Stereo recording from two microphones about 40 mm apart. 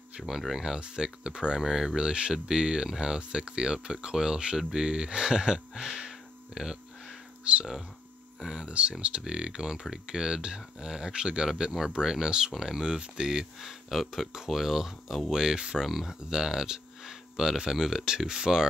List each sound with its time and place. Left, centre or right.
0.3 s speech: centre
0.7 s speech: centre
1.6 s speech: centre
5.9 s a sound: centre
7.5 s speech: right
13.6 s speech: centre
15.8 s speech: centre
16.3 s speech: centre